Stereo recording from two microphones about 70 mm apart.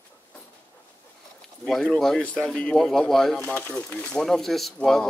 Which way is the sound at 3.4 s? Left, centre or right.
Left.